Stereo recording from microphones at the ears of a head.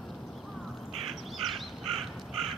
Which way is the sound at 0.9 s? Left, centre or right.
Right.